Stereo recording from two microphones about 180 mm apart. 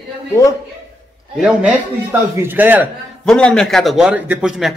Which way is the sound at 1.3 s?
5° right (ahead or behind).